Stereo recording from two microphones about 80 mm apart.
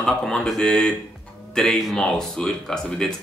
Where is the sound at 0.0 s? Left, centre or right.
Centre.